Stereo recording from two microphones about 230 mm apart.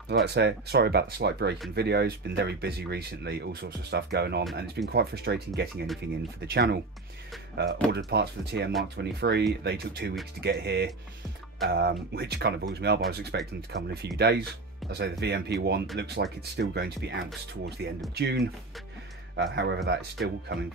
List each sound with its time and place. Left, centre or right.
0.1 s speech: right
6.4 s speech: right